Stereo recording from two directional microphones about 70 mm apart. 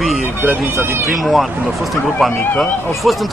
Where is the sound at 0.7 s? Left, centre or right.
Right.